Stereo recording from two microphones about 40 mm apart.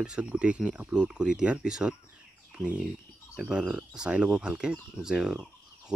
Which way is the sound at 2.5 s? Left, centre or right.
Right.